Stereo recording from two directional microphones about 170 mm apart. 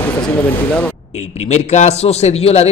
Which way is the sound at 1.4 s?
40° left (ahead or behind).